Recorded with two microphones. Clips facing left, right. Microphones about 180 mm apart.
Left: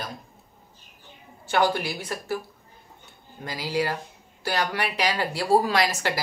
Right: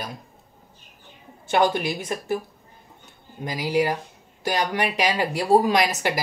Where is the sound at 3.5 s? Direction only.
15° right (ahead or behind).